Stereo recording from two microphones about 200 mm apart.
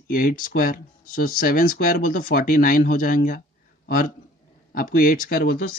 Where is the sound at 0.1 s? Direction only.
45° left (ahead or behind).